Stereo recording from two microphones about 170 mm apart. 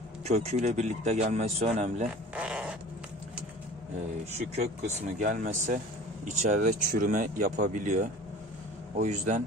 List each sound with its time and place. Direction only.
0.2 s speech: 40° right (ahead or behind)
2.3 s a sound: 5° right (ahead or behind)
4.6 s speech: 40° right (ahead or behind)